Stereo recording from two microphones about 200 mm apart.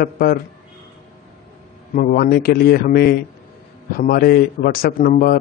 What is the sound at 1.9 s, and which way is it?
A man's voice, 45° left (ahead or behind).